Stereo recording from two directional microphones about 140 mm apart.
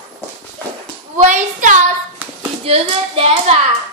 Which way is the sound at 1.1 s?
60° right (ahead or behind).